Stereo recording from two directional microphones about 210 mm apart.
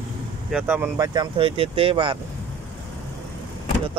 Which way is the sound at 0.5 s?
5° right (ahead or behind).